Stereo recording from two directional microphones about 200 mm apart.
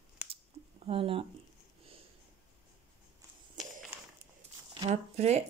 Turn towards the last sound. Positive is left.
turn(degrees=-35)  # may be behind; listen again after turning